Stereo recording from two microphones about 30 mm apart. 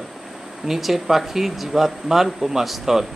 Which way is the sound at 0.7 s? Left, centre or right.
Centre.